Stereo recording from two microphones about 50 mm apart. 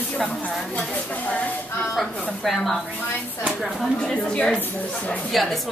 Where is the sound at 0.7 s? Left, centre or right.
Left.